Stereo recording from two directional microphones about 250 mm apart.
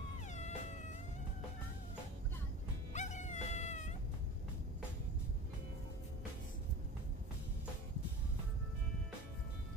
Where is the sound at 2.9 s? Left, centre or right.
Left.